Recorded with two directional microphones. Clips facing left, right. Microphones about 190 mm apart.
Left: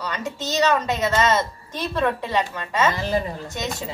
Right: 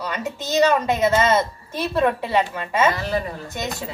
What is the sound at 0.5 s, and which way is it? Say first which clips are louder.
A woman's voice: right 3 dB; 10° right (ahead or behind).